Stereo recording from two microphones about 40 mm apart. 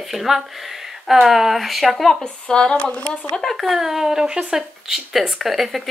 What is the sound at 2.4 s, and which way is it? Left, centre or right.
Speech, left.